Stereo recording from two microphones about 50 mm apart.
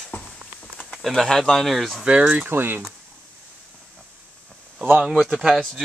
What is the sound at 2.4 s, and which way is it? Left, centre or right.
Speech, right.